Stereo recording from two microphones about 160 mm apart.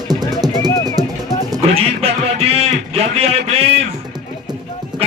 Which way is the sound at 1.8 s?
40° right (ahead or behind).